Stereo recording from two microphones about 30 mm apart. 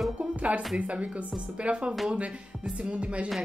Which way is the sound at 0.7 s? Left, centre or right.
Right.